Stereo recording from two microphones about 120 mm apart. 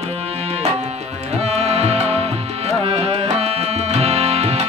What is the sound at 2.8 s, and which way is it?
Tabla, 50° right (ahead or behind).